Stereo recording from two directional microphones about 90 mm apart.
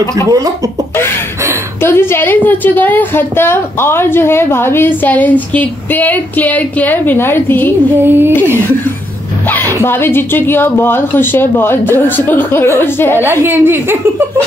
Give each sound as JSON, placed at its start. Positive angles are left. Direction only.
{"t": 1.8, "sound": "a woman's voice", "side_deg": 25}
{"t": 8.0, "sound": "speech", "side_deg": -25}
{"t": 9.8, "sound": "a woman's voice", "side_deg": 25}
{"t": 13.4, "sound": "speech", "side_deg": -25}